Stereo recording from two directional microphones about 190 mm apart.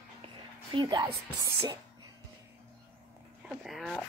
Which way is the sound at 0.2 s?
25° right (ahead or behind).